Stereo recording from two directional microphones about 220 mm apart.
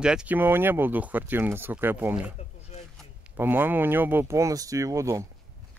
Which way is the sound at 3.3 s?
10° right (ahead or behind).